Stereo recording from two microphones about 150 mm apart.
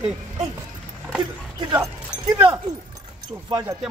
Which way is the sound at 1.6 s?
25° right (ahead or behind).